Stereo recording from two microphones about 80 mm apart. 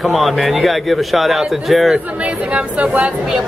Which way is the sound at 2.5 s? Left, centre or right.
Centre.